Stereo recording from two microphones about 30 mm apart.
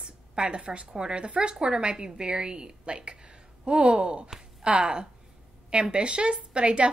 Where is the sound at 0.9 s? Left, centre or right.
Right.